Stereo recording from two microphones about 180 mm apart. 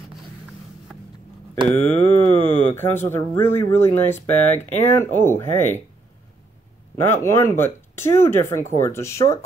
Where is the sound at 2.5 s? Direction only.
10° left (ahead or behind).